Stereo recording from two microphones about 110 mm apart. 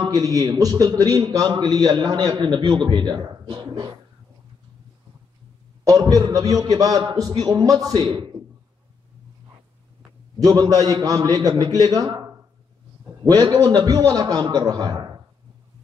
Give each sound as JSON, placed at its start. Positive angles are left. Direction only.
{"t": 0.0, "sound": "a man's voice", "side_deg": -35}
{"t": 5.9, "sound": "a man's voice", "side_deg": -35}
{"t": 10.4, "sound": "a man's voice", "side_deg": -35}